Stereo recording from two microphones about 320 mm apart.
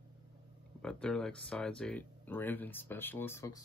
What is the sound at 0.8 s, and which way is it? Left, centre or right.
Speech, centre.